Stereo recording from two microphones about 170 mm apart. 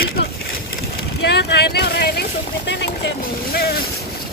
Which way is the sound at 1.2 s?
80° left.